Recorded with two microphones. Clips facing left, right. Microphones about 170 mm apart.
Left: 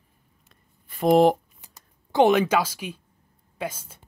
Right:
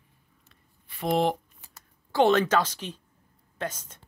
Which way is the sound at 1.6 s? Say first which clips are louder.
Left 1 dB; 15° left (ahead or behind).